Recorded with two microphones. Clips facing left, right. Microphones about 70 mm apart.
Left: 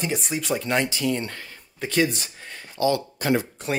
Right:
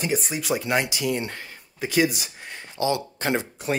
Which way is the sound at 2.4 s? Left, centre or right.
Right.